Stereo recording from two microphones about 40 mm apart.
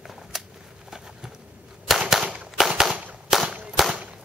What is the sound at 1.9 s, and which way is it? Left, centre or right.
Cap gun, centre.